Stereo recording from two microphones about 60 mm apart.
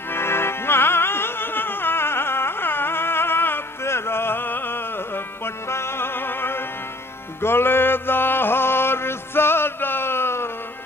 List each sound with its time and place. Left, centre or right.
0.1 s music: left